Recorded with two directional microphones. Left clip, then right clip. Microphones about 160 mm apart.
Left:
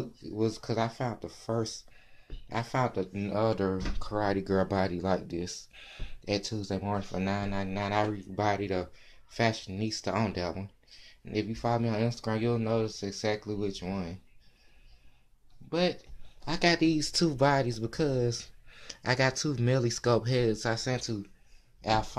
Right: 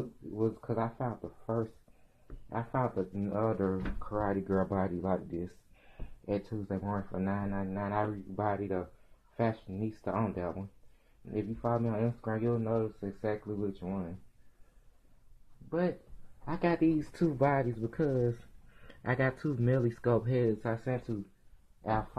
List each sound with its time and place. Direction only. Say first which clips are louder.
0.3 s speech: left 2 dB; 30° left (ahead or behind)
16.4 s speech: left 4 dB; 30° left (ahead or behind)